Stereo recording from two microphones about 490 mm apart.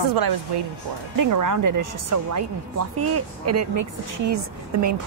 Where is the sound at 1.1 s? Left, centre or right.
Right.